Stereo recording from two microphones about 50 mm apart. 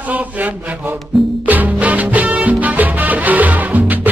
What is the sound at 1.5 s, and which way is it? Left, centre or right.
Music, right.